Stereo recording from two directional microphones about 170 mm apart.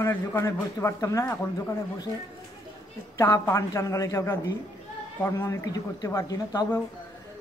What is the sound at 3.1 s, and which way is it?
Speech, 15° left (ahead or behind).